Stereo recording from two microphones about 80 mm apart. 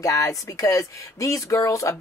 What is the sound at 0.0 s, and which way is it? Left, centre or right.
Speech, left.